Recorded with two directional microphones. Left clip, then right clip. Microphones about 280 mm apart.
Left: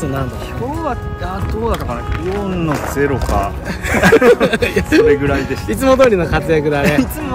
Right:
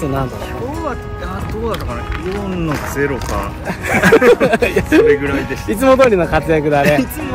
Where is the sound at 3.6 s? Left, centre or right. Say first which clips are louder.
Right 1 dB; centre.